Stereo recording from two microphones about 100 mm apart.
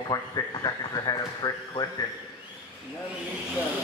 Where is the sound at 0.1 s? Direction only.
40° left (ahead or behind).